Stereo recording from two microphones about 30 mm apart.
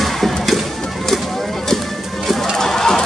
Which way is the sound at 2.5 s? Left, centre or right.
Centre.